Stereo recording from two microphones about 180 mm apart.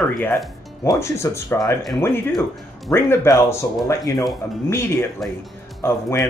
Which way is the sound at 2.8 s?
15° left (ahead or behind).